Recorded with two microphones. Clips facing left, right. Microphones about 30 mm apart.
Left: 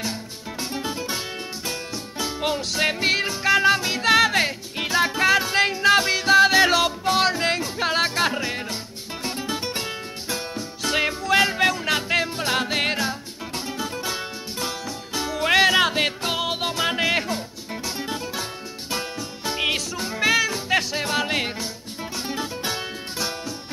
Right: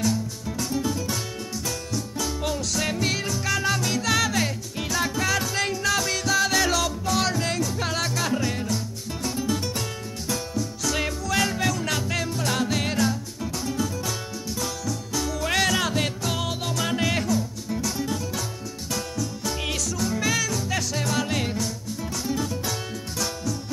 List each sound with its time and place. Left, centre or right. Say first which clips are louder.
0.0 s music: right 4 dB; left
2.1 s music: left 4 dB; left